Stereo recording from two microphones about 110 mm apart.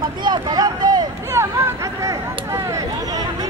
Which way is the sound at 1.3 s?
25° right (ahead or behind).